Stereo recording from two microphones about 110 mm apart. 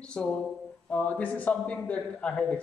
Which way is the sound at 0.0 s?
10° left (ahead or behind).